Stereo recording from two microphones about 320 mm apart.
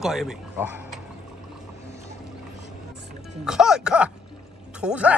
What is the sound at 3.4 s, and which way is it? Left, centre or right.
Speech, centre.